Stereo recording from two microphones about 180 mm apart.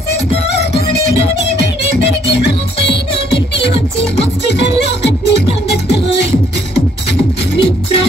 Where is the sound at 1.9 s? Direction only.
70° left (ahead or behind).